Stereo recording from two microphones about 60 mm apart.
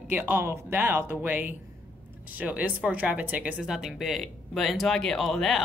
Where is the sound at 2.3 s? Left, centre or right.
Right.